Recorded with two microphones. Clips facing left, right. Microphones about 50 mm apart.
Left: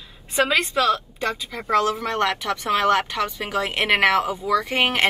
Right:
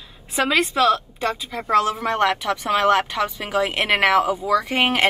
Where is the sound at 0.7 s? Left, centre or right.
Centre.